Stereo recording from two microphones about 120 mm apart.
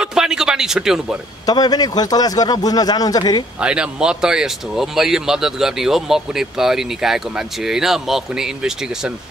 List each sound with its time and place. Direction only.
0.0 s a sound: 5° right (ahead or behind)
1.4 s a man's voice: 35° left (ahead or behind)
3.6 s speech: 10° right (ahead or behind)